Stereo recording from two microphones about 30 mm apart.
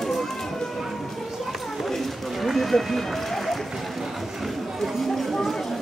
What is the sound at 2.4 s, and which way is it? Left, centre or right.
Run, centre.